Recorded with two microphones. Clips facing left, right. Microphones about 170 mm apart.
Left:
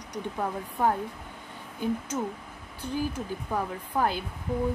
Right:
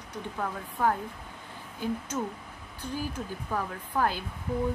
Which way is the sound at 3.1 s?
15° left (ahead or behind).